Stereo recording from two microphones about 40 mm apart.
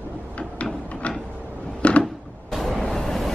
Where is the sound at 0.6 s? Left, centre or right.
Left.